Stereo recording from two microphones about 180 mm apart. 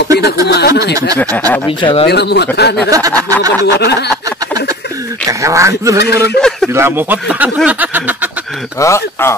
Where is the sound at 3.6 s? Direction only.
65° left (ahead or behind).